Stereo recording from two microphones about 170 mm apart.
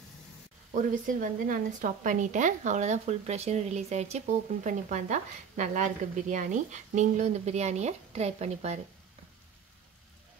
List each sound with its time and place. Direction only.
0.7 s speech: 50° right (ahead or behind)